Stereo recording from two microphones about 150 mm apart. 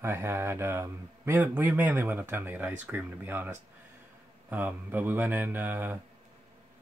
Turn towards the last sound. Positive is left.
turn(degrees=-15)  # may be behind; listen again after turning